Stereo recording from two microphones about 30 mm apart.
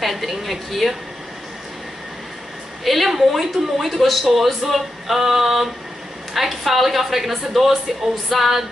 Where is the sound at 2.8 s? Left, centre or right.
Centre.